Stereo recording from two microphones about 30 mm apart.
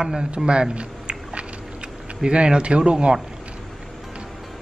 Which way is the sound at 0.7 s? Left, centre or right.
Right.